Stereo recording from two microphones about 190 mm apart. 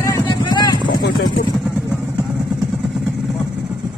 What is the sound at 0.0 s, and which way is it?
Clip-clop, 20° left (ahead or behind).